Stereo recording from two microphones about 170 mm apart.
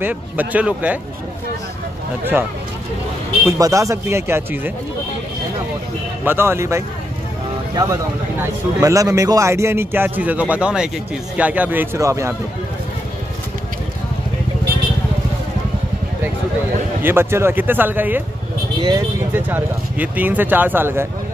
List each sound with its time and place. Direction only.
0.0 s speech: 10° right (ahead or behind)
3.4 s speech: 20° right (ahead or behind)
6.2 s speech: 15° right (ahead or behind)
17.0 s speech: 15° right (ahead or behind)
18.8 s speech: 25° right (ahead or behind)
19.3 s speech: 10° right (ahead or behind)